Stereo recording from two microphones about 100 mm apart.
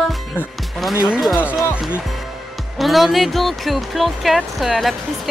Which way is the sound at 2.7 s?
Centre (ahead or behind).